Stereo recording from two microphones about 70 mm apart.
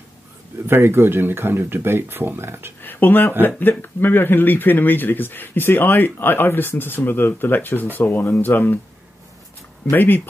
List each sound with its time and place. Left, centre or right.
0.7 s speech: right
2.8 s speech: left
9.9 s speech: left